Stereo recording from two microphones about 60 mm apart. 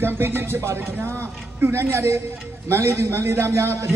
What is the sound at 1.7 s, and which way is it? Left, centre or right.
A woman's voice, right.